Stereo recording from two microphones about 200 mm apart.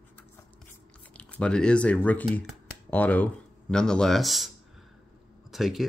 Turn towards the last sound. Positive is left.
turn(degrees=0)  # may be behind; listen again after turning